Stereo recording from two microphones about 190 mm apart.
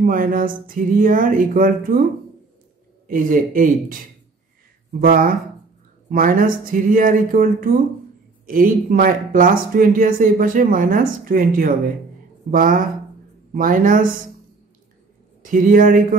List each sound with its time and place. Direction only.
0.0 s speech: 45° right (ahead or behind)
3.1 s speech: 45° right (ahead or behind)
5.0 s speech: 50° right (ahead or behind)
15.4 s speech: 45° right (ahead or behind)